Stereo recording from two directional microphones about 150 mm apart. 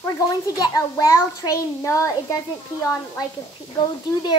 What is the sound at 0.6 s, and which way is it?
A child's voice, 25° left (ahead or behind).